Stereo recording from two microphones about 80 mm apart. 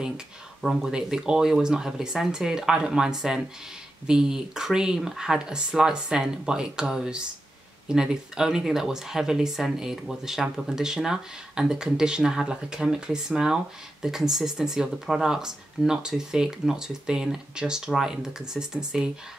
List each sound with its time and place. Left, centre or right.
0.6 s speech: centre